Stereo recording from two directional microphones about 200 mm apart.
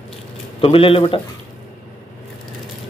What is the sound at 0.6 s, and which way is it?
Speech, 25° left (ahead or behind).